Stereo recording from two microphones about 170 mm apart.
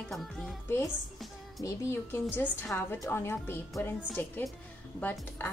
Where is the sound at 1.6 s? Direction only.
20° left (ahead or behind).